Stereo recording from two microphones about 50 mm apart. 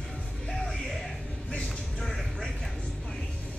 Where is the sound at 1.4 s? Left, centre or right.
Centre.